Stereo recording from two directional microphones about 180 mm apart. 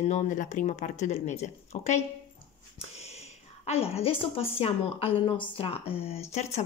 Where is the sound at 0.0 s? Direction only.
40° left (ahead or behind).